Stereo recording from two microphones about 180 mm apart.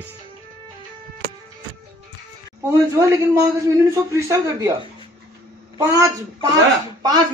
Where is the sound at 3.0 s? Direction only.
15° right (ahead or behind).